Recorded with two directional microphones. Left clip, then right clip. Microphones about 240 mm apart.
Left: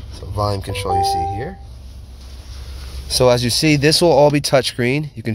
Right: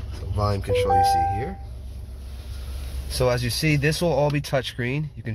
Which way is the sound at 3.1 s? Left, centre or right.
Left.